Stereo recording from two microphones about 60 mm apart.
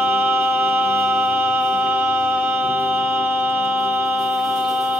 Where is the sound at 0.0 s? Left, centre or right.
Right.